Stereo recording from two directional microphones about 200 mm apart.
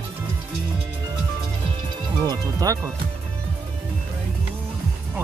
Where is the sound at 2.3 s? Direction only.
15° right (ahead or behind).